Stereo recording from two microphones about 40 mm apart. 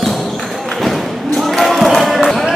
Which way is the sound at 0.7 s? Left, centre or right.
Centre.